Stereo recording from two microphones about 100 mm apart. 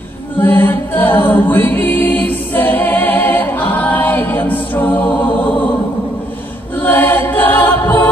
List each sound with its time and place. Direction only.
0.4 s a capella: 20° left (ahead or behind)
6.8 s chant: 20° left (ahead or behind)